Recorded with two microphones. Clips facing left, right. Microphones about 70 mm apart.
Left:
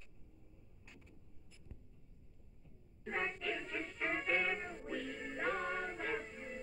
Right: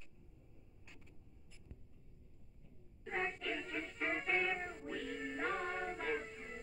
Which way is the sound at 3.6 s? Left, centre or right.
Left.